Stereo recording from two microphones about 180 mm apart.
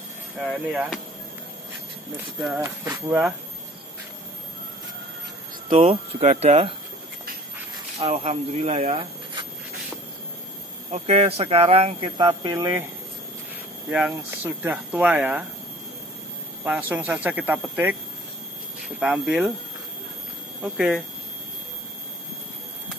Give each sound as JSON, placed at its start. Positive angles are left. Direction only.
{"t": 0.4, "sound": "speech", "side_deg": -5}
{"t": 2.4, "sound": "speech", "side_deg": -10}
{"t": 5.7, "sound": "speech", "side_deg": -30}
{"t": 8.0, "sound": "speech", "side_deg": -35}
{"t": 10.9, "sound": "speech", "side_deg": -35}
{"t": 13.8, "sound": "speech", "side_deg": -10}
{"t": 16.6, "sound": "speech", "side_deg": -10}
{"t": 18.9, "sound": "speech", "side_deg": -5}
{"t": 20.6, "sound": "speech", "side_deg": -5}